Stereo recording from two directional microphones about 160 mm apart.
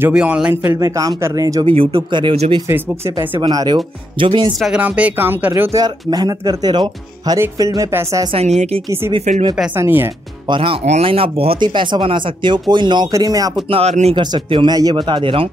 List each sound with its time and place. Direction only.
0.0 s speech: 10° right (ahead or behind)
1.7 s speech: 30° right (ahead or behind)
3.2 s speech: 25° right (ahead or behind)
4.6 s speech: 5° right (ahead or behind)
8.3 s speech: 40° right (ahead or behind)
9.8 s speech: 15° right (ahead or behind)
10.5 s speech: 35° right (ahead or behind)
13.7 s speech: 40° right (ahead or behind)
14.3 s speech: 30° right (ahead or behind)